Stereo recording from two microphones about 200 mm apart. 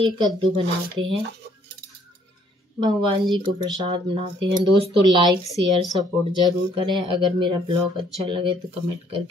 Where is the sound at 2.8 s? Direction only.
20° right (ahead or behind).